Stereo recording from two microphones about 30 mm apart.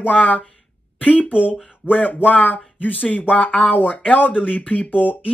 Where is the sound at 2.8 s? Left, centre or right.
Left.